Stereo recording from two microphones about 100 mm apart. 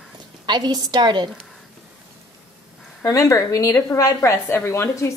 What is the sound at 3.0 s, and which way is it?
A woman's voice, 35° left (ahead or behind).